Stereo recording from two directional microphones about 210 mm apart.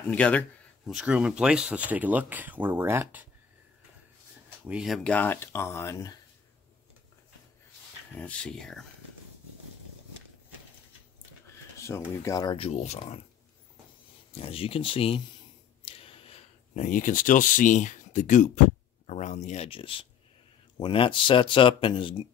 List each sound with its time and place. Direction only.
0.1 s speech: 5° left (ahead or behind); by 3.3 s 10° right (ahead or behind)
4.6 s speech: 5° right (ahead or behind); by 6.1 s 15° left (ahead or behind)
8.1 s speech: 5° left (ahead or behind)
12.1 s speech: 15° left (ahead or behind); by 13.2 s 30° left (ahead or behind)
14.3 s speech: 25° left (ahead or behind)
15.8 s a sound: 25° left (ahead or behind)
19.0 s speech: 35° left (ahead or behind)